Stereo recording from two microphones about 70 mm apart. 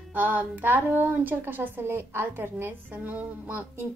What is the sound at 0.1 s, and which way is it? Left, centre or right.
A woman's voice, right.